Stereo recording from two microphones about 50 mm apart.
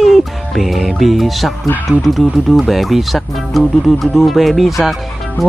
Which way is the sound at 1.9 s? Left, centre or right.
Centre.